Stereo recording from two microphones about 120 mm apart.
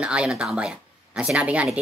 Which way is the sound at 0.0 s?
10° right (ahead or behind).